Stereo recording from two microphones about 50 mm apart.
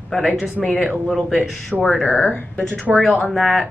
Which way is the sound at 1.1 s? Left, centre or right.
Centre.